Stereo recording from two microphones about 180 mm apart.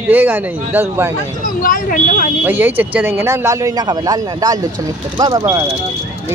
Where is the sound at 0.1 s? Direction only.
10° right (ahead or behind).